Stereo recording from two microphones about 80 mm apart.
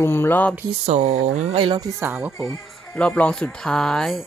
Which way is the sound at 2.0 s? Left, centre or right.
Centre.